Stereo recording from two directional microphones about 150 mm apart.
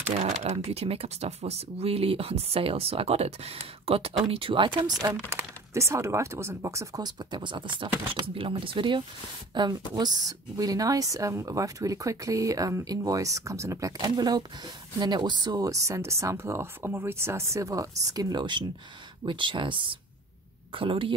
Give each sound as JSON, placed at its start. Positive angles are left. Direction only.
{"t": 0.2, "sound": "speech", "side_deg": -45}
{"t": 5.3, "sound": "speech", "side_deg": -15}